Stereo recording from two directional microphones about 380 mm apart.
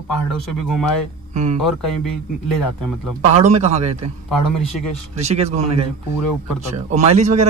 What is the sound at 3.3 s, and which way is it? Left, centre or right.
Speech, centre.